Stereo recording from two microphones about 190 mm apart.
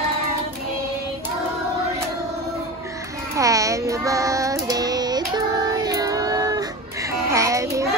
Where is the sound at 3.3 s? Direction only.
15° right (ahead or behind).